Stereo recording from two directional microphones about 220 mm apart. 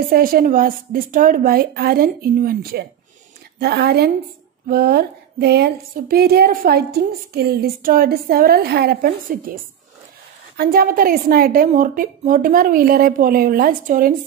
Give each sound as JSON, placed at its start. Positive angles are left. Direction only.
{"t": 0.1, "sound": "a woman's voice", "side_deg": -40}
{"t": 3.5, "sound": "a sound", "side_deg": -45}
{"t": 10.6, "sound": "a woman's voice", "side_deg": -45}